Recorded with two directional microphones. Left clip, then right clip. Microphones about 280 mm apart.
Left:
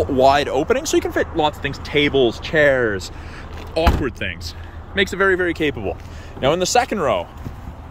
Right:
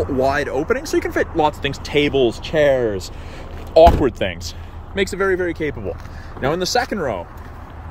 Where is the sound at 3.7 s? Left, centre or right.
Centre.